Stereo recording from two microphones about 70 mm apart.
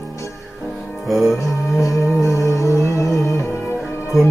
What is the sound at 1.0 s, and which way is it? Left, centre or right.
Music, centre.